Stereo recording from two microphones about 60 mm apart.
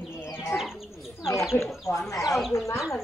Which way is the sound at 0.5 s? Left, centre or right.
Left.